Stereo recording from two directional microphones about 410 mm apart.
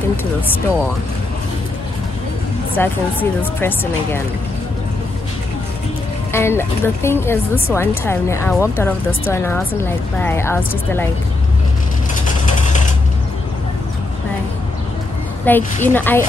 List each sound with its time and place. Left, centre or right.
2.8 s speech: centre
6.3 s speech: centre
12.4 s mechanisms: centre
15.4 s speech: centre